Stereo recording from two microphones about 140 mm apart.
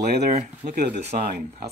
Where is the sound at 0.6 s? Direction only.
45° right (ahead or behind).